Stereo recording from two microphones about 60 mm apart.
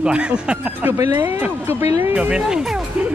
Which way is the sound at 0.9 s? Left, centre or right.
Right.